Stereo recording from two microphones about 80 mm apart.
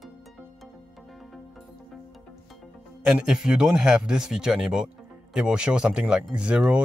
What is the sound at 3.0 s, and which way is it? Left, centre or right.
Speech, centre.